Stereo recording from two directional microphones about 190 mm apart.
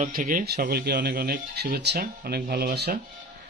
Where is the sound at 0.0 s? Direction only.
45° right (ahead or behind).